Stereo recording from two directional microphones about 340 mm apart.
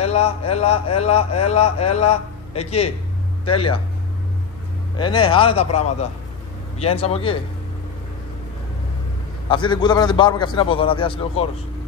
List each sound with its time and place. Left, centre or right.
0.0 s a man's voice: centre
4.9 s a man's voice: centre
9.5 s a man's voice: centre